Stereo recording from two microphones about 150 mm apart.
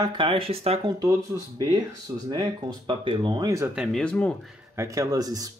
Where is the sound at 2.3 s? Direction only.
30° right (ahead or behind).